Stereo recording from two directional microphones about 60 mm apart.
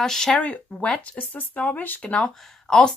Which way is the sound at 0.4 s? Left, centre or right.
Left.